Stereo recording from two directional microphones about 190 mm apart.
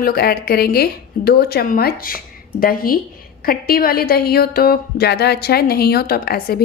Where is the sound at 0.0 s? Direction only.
55° left (ahead or behind).